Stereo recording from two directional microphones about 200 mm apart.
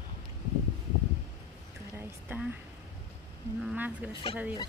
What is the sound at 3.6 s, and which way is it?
Speech, 10° right (ahead or behind).